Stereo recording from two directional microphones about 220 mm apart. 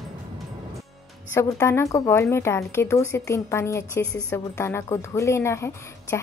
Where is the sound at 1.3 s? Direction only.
10° left (ahead or behind).